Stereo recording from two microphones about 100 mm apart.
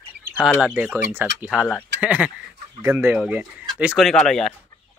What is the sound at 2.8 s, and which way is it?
Speech, 25° right (ahead or behind).